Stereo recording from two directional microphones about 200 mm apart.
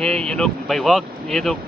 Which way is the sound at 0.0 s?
5° left (ahead or behind).